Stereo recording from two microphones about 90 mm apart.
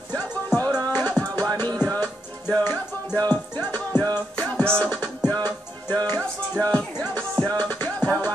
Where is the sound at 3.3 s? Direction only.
20° left (ahead or behind).